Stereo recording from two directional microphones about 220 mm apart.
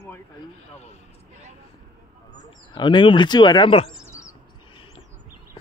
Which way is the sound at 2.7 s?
20° left (ahead or behind).